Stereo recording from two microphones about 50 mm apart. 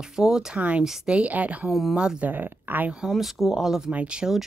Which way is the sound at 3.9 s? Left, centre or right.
Right.